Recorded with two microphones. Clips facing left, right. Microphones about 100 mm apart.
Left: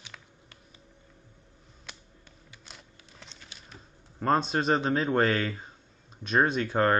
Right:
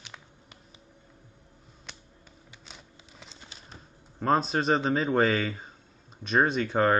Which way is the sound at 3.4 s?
30° right (ahead or behind).